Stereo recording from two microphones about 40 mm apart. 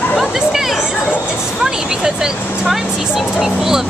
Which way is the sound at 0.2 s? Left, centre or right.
Centre.